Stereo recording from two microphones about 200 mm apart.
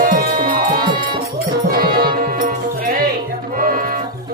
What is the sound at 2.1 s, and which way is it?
Music, 45° right (ahead or behind).